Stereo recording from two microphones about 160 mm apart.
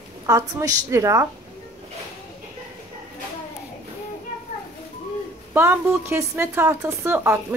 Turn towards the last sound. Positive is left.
turn(degrees=-15)  # may be behind; listen again after turning